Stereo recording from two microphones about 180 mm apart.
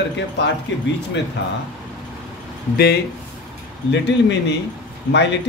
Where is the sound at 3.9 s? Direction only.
80° left.